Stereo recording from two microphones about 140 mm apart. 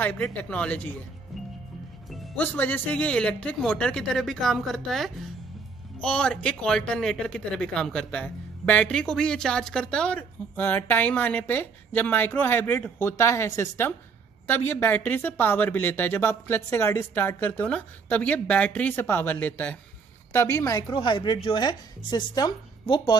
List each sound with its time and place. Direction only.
0.0 s speech: 10° left (ahead or behind)
2.3 s a woman's voice: 15° left (ahead or behind)
20.9 s a woman's voice: 35° left (ahead or behind)